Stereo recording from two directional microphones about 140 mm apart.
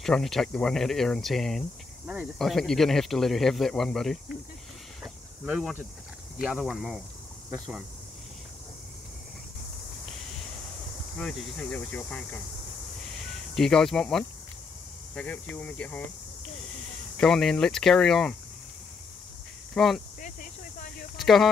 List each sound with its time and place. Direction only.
0.0 s speech: centre (ahead or behind)
5.0 s snake: 5° right (ahead or behind)
6.4 s speech: centre (ahead or behind)
11.1 s speech: 5° left (ahead or behind)
17.2 s speech: 5° left (ahead or behind)
19.7 s speech: centre (ahead or behind)
20.2 s snake: 70° left (ahead or behind)
21.2 s a sound: centre (ahead or behind)